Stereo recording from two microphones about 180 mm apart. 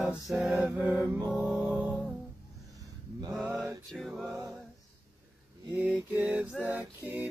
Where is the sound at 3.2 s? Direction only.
Centre (ahead or behind).